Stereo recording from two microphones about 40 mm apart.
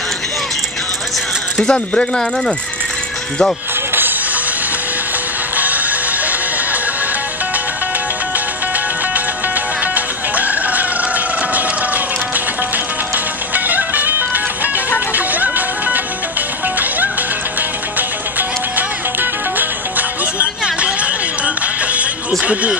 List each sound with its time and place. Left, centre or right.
1.6 s speech: left
5.6 s music: right
9.9 s music: right
13.7 s music: right
19.6 s music: right
20.6 s a sound: right
22.4 s speech: right